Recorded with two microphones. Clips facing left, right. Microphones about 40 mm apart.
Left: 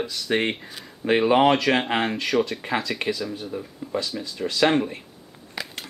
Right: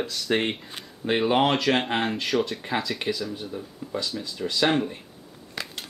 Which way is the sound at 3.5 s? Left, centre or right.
Centre.